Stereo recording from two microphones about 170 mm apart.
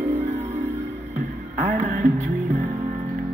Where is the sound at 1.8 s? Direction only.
45° right (ahead or behind).